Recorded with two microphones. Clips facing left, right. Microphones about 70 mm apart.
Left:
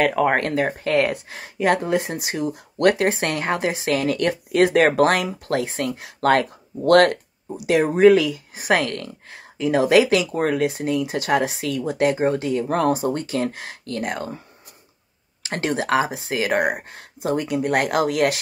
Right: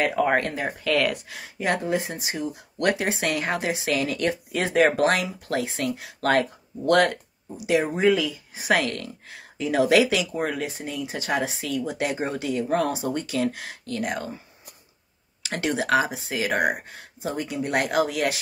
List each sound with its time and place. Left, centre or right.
0.0 s speech: left
0.8 s speech: left
1.3 s speech: left
10.3 s speech: left
15.5 s speech: left